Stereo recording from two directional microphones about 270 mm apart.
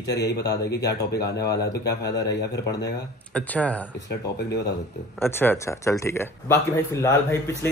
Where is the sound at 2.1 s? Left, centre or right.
Left.